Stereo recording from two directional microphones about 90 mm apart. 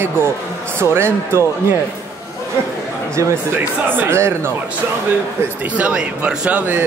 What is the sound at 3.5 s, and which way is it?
Speech, 20° right (ahead or behind).